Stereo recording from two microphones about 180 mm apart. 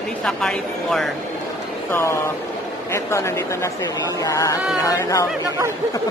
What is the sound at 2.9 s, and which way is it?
Speech, 15° left (ahead or behind).